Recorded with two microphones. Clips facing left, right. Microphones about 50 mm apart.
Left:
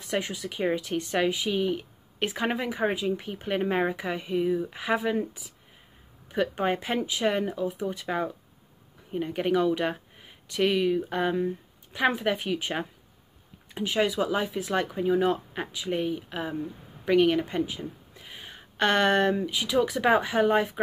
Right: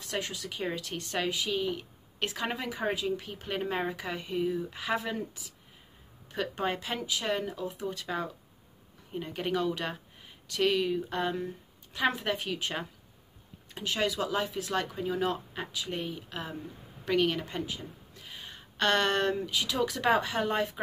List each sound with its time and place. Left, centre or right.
0.0 s a woman's voice: centre